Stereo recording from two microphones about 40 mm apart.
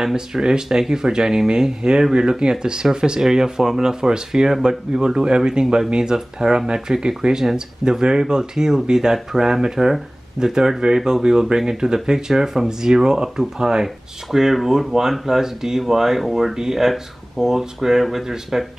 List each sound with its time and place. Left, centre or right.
0.0 s speech: centre